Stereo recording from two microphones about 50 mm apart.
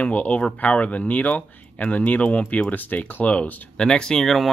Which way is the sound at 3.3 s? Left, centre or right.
Centre.